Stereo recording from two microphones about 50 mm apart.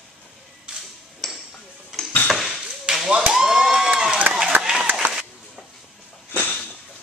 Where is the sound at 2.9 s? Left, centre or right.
Centre.